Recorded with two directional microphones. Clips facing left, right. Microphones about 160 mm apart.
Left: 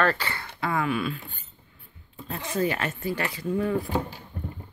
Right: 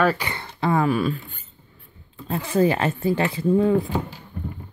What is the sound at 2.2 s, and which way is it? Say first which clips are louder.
Speech: right 7 dB; 30° right (ahead or behind).